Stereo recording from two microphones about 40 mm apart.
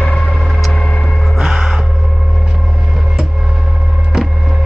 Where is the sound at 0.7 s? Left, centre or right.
Left.